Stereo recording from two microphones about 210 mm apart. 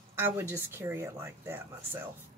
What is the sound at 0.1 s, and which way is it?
Speech, 10° right (ahead or behind).